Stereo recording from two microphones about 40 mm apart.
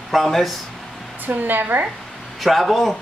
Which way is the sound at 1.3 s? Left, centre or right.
Right.